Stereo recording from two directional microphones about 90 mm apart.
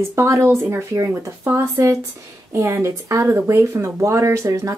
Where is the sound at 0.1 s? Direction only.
30° right (ahead or behind).